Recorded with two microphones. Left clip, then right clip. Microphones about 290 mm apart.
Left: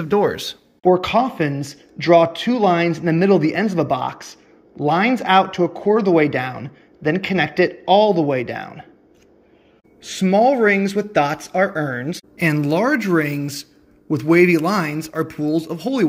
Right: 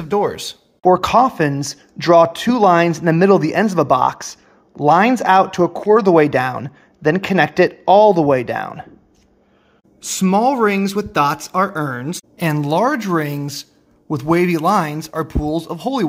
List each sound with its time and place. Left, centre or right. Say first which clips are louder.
0.0 s speech: even; centre
0.8 s speech: right 4 dB; centre
10.0 s speech: even; centre